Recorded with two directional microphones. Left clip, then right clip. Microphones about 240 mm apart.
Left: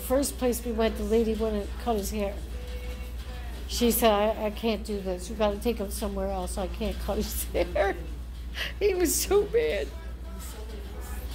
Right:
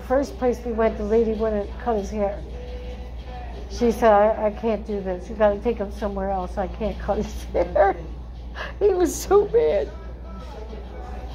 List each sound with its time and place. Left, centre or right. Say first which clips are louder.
0.1 s a woman's voice: right 5 dB; left
3.7 s a woman's voice: right 6 dB; left
8.5 s a woman's voice: right 6 dB; centre